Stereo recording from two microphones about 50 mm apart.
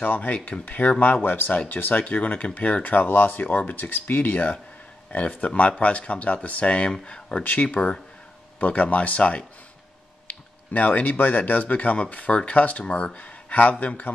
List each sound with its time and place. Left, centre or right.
0.0 s speech: left; by 7.4 s centre
7.4 s speech: left